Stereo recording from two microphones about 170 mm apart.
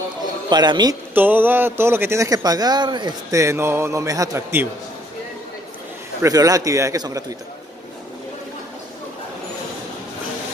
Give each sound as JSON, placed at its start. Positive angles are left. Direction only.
{"t": 0.5, "sound": "a man's voice", "side_deg": -25}
{"t": 1.1, "sound": "a man's voice", "side_deg": -10}
{"t": 6.2, "sound": "a man's voice", "side_deg": -20}